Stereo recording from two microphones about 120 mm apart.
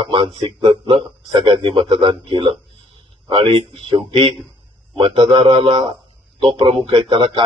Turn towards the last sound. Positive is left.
turn(degrees=-40)  # may be behind; listen again after turning